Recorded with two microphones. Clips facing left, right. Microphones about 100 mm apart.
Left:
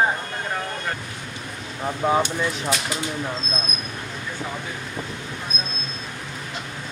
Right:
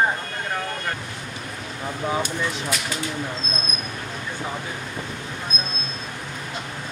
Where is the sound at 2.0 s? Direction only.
30° left (ahead or behind).